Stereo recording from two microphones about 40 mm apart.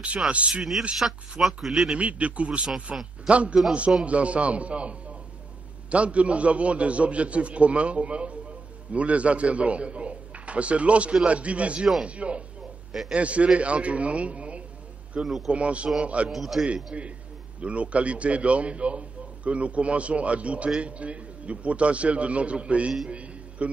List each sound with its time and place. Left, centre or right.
0.3 s a man's voice: right
1.4 s speech: centre
1.9 s a man's voice: right
16.3 s a man's voice: centre
16.6 s a man's voice: right
23.0 s a sound: right